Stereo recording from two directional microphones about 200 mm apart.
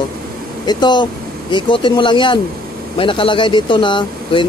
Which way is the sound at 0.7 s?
20° left (ahead or behind).